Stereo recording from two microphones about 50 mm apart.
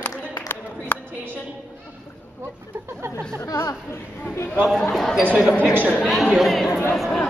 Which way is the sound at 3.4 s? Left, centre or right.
Left.